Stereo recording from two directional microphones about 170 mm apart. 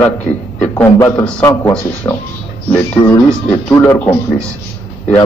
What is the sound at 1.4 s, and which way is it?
Speech, 20° left (ahead or behind).